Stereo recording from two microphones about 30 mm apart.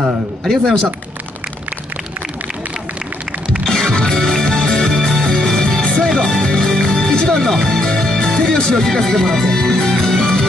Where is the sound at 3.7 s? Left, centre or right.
Left.